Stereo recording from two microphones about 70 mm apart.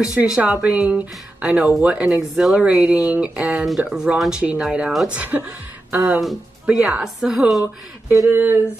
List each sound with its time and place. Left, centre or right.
0.0 s a woman's voice: centre
8.3 s speech: right